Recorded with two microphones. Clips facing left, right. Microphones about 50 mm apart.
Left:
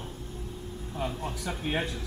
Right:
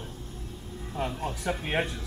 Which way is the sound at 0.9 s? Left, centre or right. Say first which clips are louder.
Right 2 dB; right.